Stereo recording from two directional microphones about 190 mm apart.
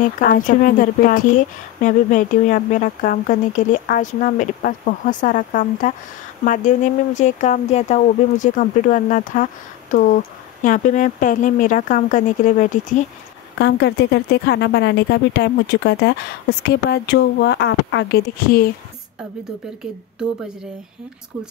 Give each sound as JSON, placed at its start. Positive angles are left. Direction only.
{"t": 0.2, "sound": "a woman's voice", "side_deg": 45}
{"t": 13.6, "sound": "a woman's voice", "side_deg": 65}